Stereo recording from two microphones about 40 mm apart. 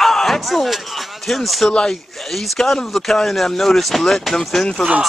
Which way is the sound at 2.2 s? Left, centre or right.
Centre.